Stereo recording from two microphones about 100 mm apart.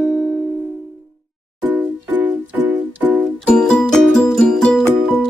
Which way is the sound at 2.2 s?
15° right (ahead or behind).